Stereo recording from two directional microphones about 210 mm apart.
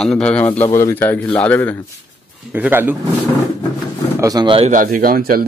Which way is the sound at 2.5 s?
10° right (ahead or behind).